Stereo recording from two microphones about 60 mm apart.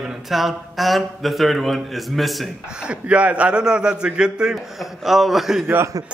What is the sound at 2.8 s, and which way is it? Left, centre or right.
A man's voice, centre.